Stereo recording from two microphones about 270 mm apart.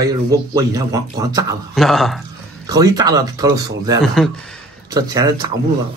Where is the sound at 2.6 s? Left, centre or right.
Centre.